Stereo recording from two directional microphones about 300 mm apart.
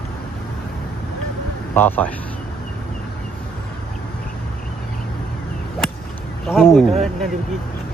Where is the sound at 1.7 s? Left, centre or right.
Centre.